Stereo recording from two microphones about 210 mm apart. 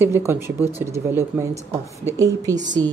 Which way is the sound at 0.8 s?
15° right (ahead or behind).